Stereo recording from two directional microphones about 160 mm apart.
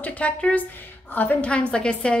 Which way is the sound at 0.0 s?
10° left (ahead or behind).